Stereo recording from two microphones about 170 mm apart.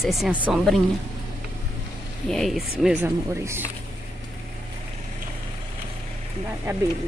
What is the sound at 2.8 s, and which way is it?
Speech, 10° right (ahead or behind).